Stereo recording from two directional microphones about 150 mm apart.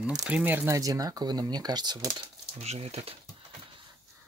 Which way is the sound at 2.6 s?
45° right (ahead or behind).